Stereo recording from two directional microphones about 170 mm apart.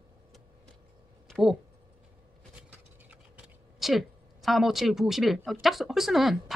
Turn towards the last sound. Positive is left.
turn(degrees=0)  # may be behind; listen again after turning